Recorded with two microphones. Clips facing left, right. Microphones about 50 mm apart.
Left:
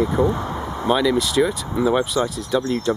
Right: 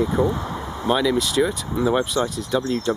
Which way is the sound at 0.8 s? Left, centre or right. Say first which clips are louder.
Left 1 dB; centre.